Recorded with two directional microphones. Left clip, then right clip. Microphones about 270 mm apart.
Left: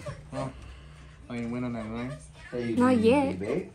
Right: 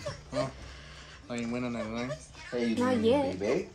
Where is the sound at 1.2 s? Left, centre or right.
Centre.